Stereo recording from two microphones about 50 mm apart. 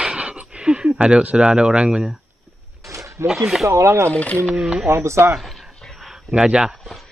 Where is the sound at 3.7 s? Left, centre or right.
Right.